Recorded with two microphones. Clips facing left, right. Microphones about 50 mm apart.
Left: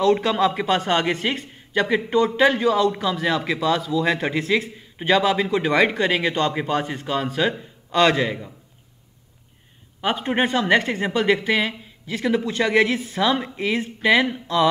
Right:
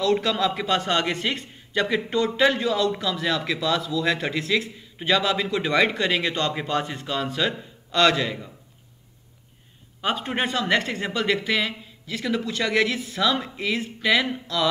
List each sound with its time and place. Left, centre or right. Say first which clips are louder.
0.0 s a man's voice: left 4 dB; centre
10.0 s a man's voice: left 4 dB; left